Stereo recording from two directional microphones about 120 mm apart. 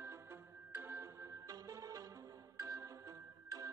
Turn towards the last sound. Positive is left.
turn(degrees=-25)  # may be behind; listen again after turning